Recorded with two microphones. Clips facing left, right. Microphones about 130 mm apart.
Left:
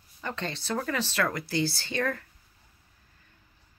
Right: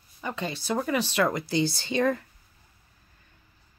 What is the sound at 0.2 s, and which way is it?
Speech, 10° right (ahead or behind).